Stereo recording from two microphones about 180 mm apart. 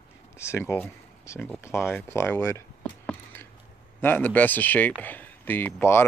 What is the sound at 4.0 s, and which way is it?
Speech, 10° left (ahead or behind).